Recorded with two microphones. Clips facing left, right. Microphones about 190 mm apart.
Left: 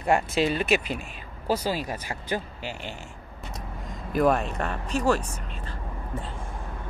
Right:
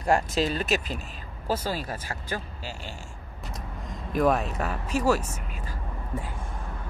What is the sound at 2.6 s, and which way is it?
Speech, 35° right (ahead or behind).